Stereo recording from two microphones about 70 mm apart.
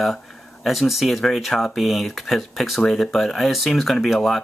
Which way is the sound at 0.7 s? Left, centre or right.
Centre.